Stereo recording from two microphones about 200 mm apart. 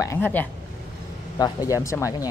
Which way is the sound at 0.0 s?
10° left (ahead or behind).